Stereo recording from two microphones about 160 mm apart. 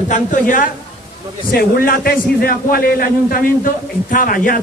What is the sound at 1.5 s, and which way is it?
A man's voice, 65° left (ahead or behind).